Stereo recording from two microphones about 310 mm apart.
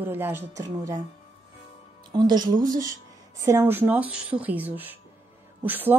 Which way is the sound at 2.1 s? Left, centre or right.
Centre.